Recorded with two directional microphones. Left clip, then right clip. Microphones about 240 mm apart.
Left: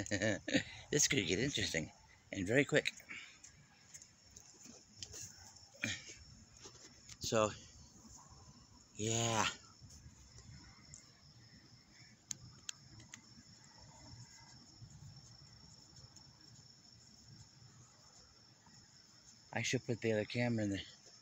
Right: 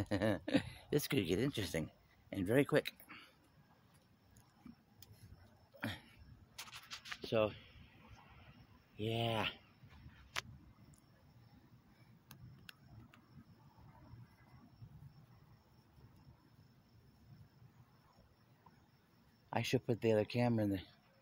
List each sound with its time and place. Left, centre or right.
0.0 s speech: centre
5.8 s a sound: centre
7.2 s speech: centre
8.9 s speech: centre
12.3 s tick-tock: right
19.5 s speech: centre